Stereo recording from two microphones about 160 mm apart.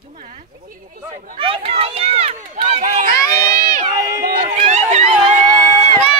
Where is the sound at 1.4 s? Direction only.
35° right (ahead or behind).